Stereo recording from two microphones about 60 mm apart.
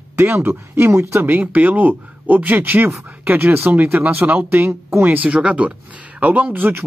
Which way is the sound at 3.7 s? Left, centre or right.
Right.